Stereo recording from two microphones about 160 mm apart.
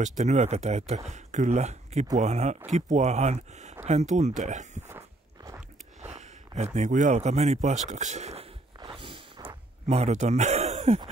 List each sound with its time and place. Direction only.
0.0 s speech: 45° right (ahead or behind)
4.8 s walk: 15° right (ahead or behind)
5.9 s speech: 45° right (ahead or behind)
8.7 s dog: 35° right (ahead or behind)